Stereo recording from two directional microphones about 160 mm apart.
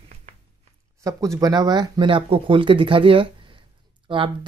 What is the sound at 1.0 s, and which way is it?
Speech, 20° right (ahead or behind).